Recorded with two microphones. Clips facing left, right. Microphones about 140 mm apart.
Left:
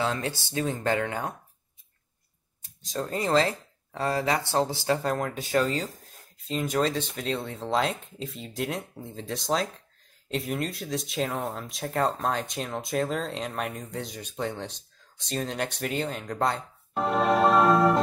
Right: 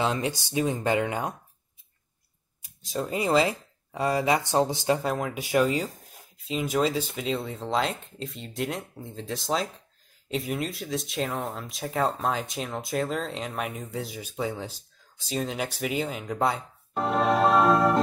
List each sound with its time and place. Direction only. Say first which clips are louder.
0.0 s speech: right 2 dB; 15° right (ahead or behind)
2.6 s speech: right 1 dB; 10° right (ahead or behind)
5.0 s speech: even; 5° right (ahead or behind)